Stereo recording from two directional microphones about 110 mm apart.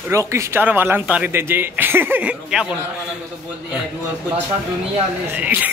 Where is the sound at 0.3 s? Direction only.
25° right (ahead or behind).